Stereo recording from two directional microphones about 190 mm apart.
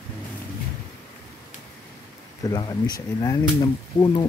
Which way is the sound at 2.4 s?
20° left (ahead or behind).